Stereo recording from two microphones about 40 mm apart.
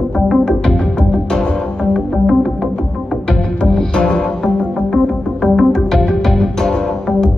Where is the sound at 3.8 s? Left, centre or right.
Centre.